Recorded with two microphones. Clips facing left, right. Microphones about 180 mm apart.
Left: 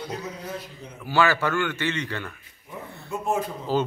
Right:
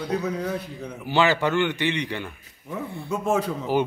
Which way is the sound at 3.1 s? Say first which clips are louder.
Right 3 dB; 90° right.